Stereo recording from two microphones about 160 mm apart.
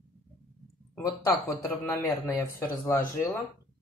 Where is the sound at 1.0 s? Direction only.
20° left (ahead or behind).